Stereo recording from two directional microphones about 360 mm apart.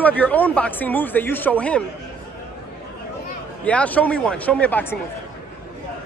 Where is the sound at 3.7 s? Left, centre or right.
Centre.